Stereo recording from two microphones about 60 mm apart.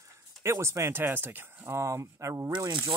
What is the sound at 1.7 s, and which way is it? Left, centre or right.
Speech, right.